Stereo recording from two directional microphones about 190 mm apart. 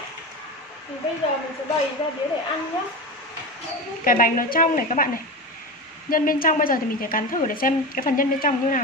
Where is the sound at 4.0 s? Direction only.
45° left (ahead or behind).